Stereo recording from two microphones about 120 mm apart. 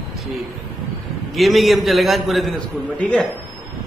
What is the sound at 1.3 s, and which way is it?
A man's voice, centre (ahead or behind).